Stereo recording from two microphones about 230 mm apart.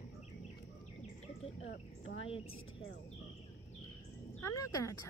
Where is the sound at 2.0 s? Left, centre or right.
Left.